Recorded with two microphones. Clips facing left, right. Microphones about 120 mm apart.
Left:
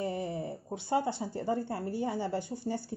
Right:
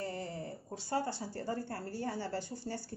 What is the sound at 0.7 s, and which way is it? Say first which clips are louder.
A woman's voice: left 5 dB; 20° left (ahead or behind).